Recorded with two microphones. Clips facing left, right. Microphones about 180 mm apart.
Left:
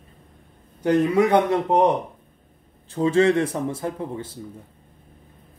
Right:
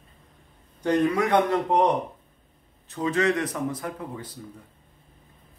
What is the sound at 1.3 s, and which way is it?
Speech, 25° left (ahead or behind).